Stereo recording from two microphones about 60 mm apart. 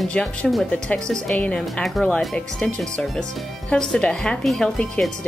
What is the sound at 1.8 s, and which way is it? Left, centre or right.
Speech, centre.